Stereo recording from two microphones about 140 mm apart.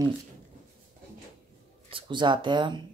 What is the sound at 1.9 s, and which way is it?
Speech, 35° right (ahead or behind).